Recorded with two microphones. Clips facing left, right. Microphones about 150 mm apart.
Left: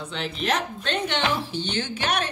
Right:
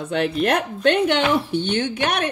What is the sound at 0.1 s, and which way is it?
Speech, 55° right (ahead or behind).